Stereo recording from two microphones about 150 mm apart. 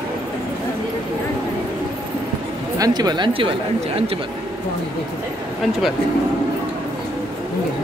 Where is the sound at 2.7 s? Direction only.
25° right (ahead or behind).